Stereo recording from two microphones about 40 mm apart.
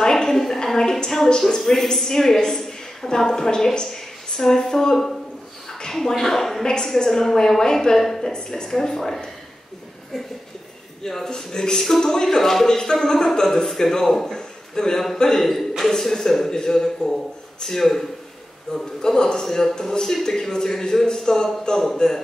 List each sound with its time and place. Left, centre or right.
0.0 s a woman's voice: centre
8.6 s speech: centre
11.2 s speech: centre